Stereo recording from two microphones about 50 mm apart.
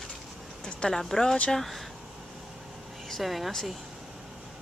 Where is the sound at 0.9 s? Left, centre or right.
Centre.